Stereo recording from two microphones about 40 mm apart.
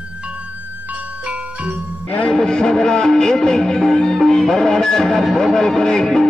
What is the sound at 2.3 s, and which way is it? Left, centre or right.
Music, centre.